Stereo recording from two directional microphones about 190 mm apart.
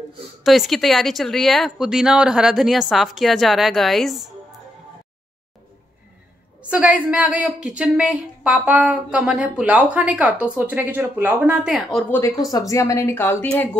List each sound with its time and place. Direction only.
0.4 s speech: centre (ahead or behind)
6.7 s a woman's voice: 5° right (ahead or behind)
12.1 s speech: 15° left (ahead or behind)